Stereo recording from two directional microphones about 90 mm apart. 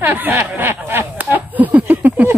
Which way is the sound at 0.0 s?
25° right (ahead or behind).